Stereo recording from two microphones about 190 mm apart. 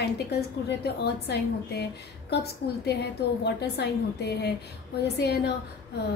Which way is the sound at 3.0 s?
60° left (ahead or behind).